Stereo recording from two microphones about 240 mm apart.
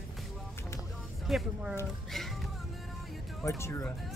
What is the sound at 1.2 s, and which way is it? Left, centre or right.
Speech, centre.